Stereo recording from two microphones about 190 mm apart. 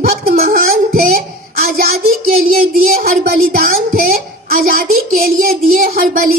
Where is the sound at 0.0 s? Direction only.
50° right (ahead or behind).